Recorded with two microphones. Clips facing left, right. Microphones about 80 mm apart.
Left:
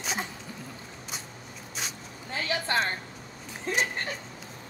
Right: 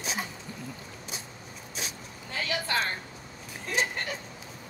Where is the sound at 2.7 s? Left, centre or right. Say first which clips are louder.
Left 2 dB; left.